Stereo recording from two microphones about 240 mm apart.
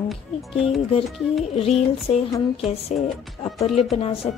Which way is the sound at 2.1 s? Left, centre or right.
Left.